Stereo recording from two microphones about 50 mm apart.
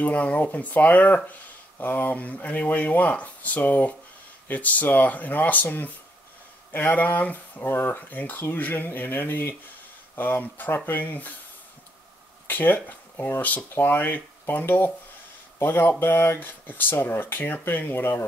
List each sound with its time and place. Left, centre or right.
0.0 s speech: left
7.7 s speech: left
8.1 s speech: left
12.4 s speech: left